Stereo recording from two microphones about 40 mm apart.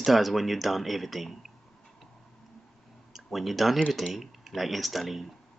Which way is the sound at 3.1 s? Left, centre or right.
Centre.